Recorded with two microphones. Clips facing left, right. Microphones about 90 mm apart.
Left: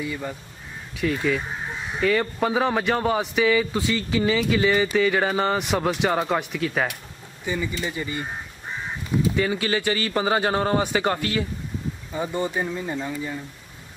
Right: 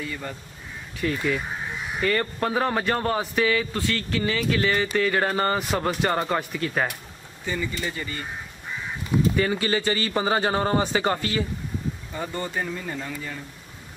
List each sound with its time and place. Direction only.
0.0 s speech: 10° left (ahead or behind)
0.9 s a man's voice: centre (ahead or behind)
7.4 s speech: 15° left (ahead or behind)
9.4 s a man's voice: 5° left (ahead or behind)
12.1 s speech: 15° left (ahead or behind)